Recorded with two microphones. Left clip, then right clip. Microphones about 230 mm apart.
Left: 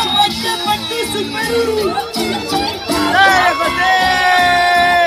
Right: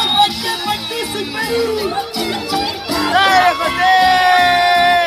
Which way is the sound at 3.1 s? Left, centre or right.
Centre.